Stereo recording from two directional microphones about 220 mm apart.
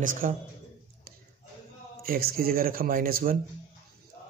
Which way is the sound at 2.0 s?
40° right (ahead or behind).